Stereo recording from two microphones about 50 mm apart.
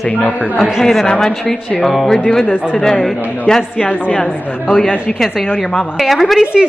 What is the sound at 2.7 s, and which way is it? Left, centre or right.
Speech, centre.